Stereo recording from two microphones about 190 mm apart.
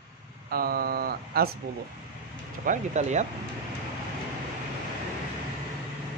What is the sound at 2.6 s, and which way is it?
Speech, 40° right (ahead or behind).